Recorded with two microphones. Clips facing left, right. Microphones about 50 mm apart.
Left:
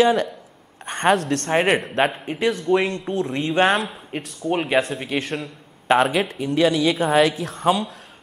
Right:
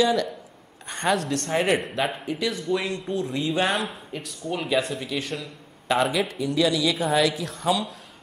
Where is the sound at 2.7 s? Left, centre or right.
Left.